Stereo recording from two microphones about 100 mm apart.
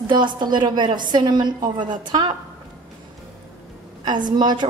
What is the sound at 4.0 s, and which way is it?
Speech, 50° right (ahead or behind).